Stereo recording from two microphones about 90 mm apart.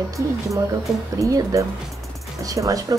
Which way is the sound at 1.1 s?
40° right (ahead or behind).